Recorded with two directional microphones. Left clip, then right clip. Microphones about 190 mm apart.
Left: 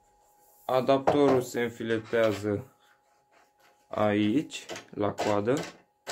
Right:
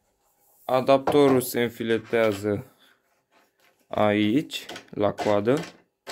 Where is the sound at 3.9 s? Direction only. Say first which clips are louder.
Right 4 dB; 50° right (ahead or behind).